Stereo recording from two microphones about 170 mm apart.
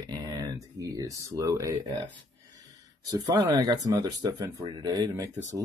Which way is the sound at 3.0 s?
20° right (ahead or behind).